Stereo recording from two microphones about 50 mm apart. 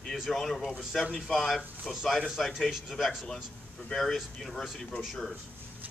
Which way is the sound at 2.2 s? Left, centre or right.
Centre.